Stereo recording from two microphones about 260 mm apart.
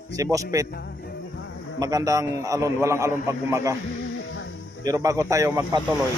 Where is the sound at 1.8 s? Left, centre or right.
Centre.